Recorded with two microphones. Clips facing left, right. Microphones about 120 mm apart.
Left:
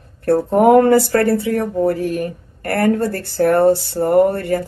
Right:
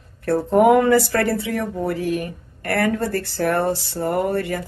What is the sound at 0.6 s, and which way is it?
Speech, 50° left (ahead or behind).